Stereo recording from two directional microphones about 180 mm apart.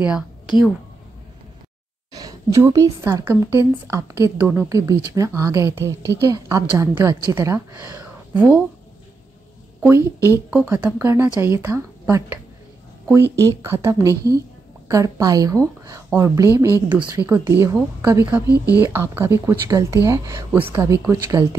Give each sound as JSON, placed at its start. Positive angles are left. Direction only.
{"t": 0.0, "sound": "a woman's voice", "side_deg": -5}
{"t": 2.1, "sound": "a woman's voice", "side_deg": -20}
{"t": 9.8, "sound": "a woman's voice", "side_deg": -15}